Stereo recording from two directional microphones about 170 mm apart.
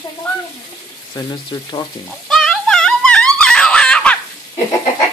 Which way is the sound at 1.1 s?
20° left (ahead or behind).